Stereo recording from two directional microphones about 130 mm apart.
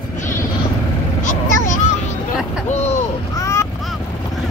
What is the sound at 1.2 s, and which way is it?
Vehicle, 75° left (ahead or behind).